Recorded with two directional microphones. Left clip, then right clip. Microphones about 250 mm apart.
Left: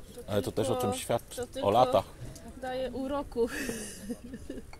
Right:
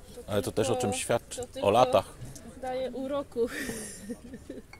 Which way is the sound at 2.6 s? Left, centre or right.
Centre.